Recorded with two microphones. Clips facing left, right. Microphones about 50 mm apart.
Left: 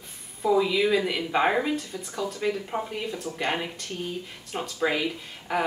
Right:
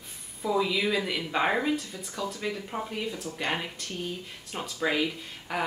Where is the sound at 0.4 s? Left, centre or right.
Centre.